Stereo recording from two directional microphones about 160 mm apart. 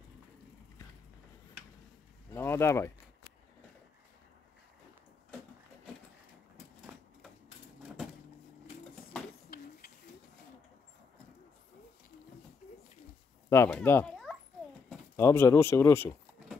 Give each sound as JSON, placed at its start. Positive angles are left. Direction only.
{"t": 2.3, "sound": "speech", "side_deg": 15}
{"t": 9.5, "sound": "bird", "side_deg": 70}
{"t": 13.5, "sound": "speech", "side_deg": 15}
{"t": 15.1, "sound": "speech", "side_deg": 15}